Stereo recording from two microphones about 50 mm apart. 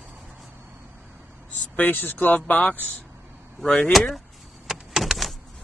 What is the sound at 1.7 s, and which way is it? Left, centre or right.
Speech, left.